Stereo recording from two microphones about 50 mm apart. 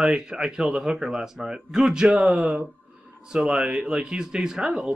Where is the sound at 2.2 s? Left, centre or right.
Right.